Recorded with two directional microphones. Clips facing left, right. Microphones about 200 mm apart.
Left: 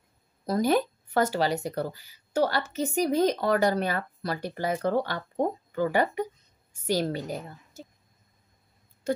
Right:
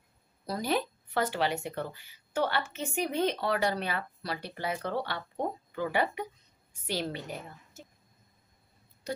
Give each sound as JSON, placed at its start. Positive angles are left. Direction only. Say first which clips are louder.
{"t": 0.5, "sound": "a woman's voice", "louder": "left 7 dB", "side_deg": 45}
{"t": 9.1, "sound": "tick-tock", "louder": "left 8 dB", "side_deg": 50}